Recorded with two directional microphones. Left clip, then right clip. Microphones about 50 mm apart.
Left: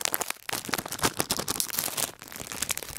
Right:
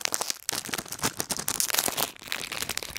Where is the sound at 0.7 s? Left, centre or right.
Centre.